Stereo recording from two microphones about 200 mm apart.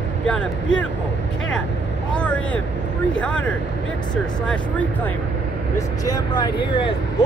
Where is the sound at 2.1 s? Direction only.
5° left (ahead or behind).